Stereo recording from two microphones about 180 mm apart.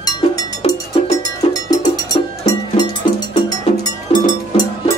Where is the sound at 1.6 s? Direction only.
20° left (ahead or behind).